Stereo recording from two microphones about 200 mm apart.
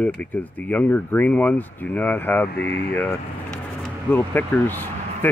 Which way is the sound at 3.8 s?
10° left (ahead or behind).